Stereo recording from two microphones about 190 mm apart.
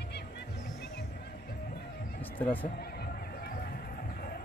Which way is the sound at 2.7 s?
55° left (ahead or behind).